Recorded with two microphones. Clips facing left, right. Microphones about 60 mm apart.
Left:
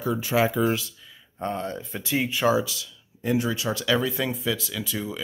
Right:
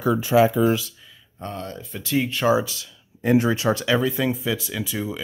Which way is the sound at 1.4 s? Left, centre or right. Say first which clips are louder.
Left 3 dB; left.